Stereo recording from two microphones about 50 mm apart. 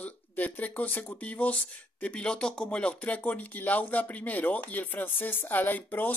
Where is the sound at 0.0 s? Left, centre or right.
Left.